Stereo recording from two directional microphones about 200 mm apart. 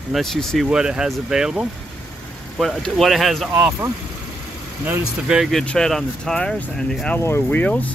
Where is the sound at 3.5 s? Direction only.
10° right (ahead or behind); by 7.9 s 10° left (ahead or behind).